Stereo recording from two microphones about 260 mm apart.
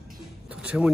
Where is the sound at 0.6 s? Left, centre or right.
Centre.